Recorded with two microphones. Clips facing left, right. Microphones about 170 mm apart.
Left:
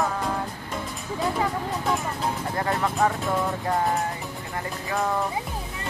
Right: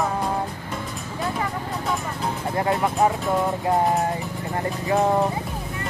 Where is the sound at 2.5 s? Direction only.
20° right (ahead or behind).